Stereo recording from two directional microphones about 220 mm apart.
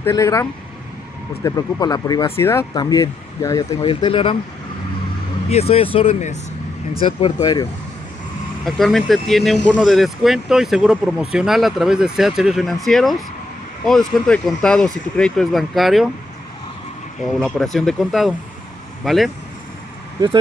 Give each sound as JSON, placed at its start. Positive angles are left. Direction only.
{"t": 0.0, "sound": "speech", "side_deg": 15}
{"t": 5.5, "sound": "speech", "side_deg": 25}
{"t": 8.6, "sound": "speech", "side_deg": 0}
{"t": 17.3, "sound": "speech", "side_deg": 0}